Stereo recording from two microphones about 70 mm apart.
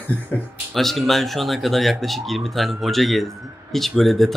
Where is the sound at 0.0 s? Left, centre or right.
Left.